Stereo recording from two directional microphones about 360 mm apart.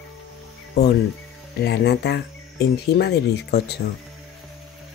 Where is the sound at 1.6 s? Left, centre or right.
Left.